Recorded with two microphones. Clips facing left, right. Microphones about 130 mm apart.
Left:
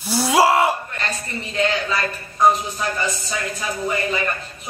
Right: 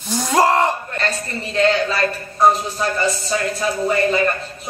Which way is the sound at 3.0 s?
30° right (ahead or behind).